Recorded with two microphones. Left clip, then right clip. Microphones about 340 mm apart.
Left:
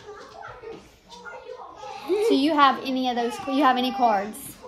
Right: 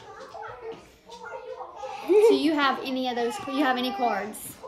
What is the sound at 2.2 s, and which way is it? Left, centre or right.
A child's voice, centre.